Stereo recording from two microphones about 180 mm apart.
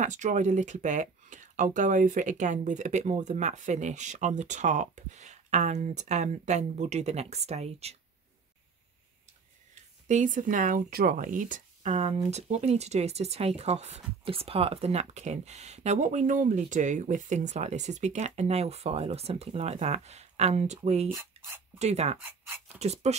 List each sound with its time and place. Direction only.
0.0 s speech: 45° right (ahead or behind)
10.0 s speech: 45° right (ahead or behind)
21.1 s speech: 15° right (ahead or behind)
21.7 s speech: 35° right (ahead or behind)
22.2 s speech: 10° right (ahead or behind)
22.8 s speech: 35° right (ahead or behind)